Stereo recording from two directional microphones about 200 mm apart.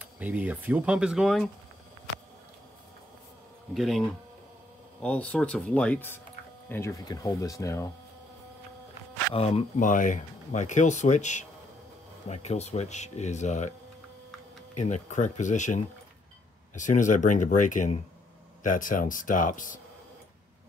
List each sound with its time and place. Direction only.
0.0 s speech: 10° right (ahead or behind)
3.7 s speech: centre (ahead or behind)
5.0 s speech: 5° left (ahead or behind)
9.3 s speech: 30° left (ahead or behind)
14.8 s speech: 35° left (ahead or behind)